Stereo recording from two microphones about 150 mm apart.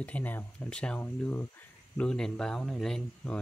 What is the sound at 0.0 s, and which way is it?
Speech, 10° left (ahead or behind).